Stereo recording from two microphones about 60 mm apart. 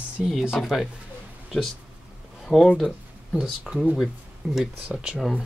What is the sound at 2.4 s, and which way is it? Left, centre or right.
Speech, centre.